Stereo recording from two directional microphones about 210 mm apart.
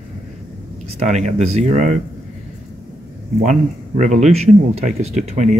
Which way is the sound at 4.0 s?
35° right (ahead or behind).